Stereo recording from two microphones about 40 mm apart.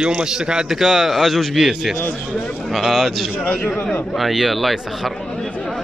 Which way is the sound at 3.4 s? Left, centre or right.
Left.